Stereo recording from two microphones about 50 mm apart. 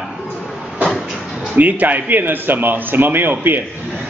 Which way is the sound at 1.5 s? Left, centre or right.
Right.